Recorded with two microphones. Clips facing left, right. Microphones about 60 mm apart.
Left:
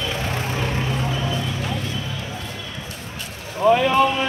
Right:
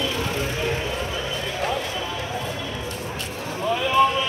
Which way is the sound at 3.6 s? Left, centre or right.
Left.